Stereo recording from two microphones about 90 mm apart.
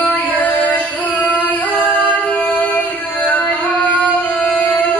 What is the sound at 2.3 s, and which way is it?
Music, 15° left (ahead or behind).